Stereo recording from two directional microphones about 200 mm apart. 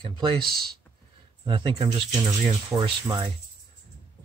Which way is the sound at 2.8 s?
20° right (ahead or behind).